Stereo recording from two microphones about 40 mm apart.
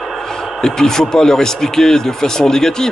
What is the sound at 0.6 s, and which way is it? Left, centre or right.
A man's voice, centre.